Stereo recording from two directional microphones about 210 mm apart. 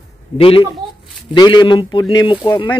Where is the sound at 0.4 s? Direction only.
25° left (ahead or behind).